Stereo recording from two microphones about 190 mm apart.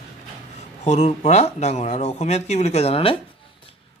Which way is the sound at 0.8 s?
35° left (ahead or behind).